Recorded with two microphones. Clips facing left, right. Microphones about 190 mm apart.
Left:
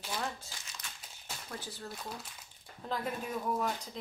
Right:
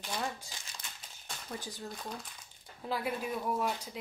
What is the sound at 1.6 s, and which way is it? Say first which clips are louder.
Speech: right 1 dB; 15° right (ahead or behind).